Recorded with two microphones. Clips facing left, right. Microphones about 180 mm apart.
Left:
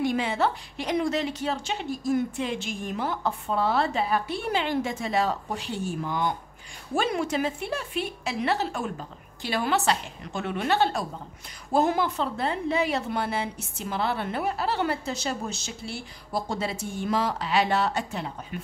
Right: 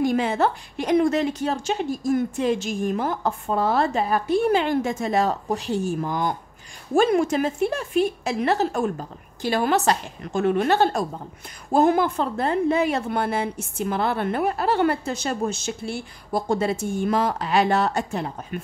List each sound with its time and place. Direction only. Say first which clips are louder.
0.0 s a woman's voice: right 4 dB; 45° right (ahead or behind)